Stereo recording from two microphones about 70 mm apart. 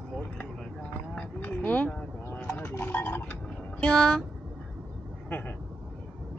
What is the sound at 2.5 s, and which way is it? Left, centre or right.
Clip-clop, left.